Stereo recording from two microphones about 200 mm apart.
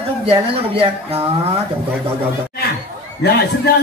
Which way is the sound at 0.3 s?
30° right (ahead or behind).